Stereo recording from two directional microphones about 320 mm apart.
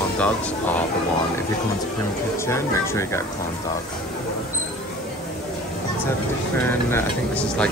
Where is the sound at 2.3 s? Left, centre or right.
Centre.